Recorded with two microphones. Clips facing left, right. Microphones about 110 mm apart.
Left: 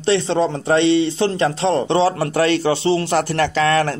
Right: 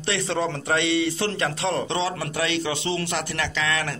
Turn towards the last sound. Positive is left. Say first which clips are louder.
# left 10 dB
turn(degrees=45)  # may be behind; listen again after turning